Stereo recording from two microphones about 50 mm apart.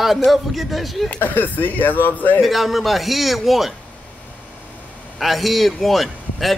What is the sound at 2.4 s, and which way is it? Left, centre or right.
Speech, centre.